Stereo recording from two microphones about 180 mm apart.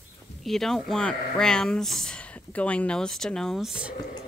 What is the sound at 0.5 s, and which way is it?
Speech, centre (ahead or behind).